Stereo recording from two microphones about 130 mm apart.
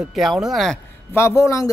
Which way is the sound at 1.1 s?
20° left (ahead or behind).